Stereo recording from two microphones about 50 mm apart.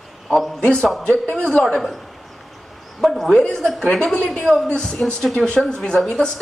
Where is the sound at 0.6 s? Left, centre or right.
Centre.